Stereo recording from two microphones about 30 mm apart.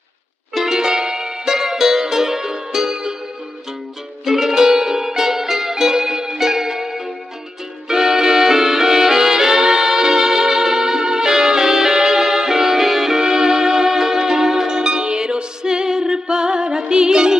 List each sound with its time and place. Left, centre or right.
0.6 s music: centre
4.2 s music: centre
14.8 s music: right